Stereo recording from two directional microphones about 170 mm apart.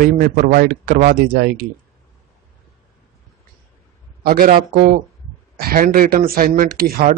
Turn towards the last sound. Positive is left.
turn(degrees=-65)  # may be behind; listen again after turning